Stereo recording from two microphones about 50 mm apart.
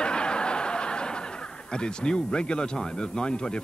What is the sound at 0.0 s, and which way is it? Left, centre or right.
A man's voice, centre.